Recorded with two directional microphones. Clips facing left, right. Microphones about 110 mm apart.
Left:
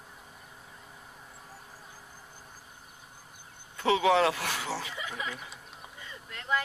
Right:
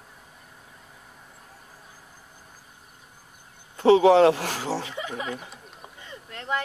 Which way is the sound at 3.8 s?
35° right (ahead or behind).